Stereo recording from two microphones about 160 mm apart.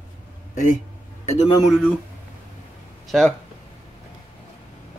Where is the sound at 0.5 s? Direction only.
55° left (ahead or behind).